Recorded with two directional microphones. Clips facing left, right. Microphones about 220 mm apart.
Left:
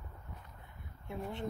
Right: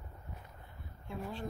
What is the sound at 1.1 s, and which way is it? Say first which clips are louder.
Speech: left 1 dB; 20° left (ahead or behind).